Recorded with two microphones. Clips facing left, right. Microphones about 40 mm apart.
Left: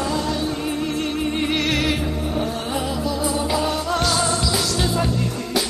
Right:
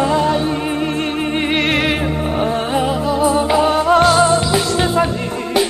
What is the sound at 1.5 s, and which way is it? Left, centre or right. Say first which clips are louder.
Music: right 7 dB; right.